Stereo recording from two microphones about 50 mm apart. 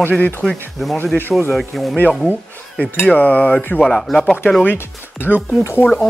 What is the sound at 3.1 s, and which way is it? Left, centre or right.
Cutlery, left.